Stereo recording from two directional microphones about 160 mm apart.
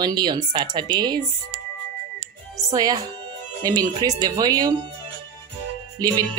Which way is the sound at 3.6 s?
25° right (ahead or behind).